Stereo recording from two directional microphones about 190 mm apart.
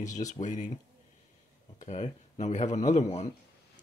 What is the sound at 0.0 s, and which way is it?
Speech, 40° left (ahead or behind).